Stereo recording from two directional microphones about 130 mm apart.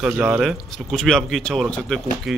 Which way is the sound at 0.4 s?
Centre (ahead or behind).